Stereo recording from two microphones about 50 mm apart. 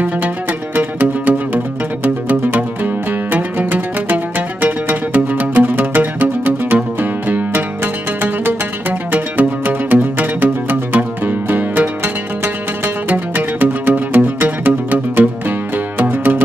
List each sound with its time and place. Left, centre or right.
0.7 s music: right
16.0 s music: right